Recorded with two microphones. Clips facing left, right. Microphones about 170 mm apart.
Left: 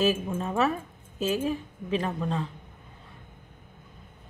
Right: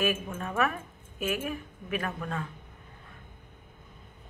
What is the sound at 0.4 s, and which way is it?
A woman's voice, 20° left (ahead or behind).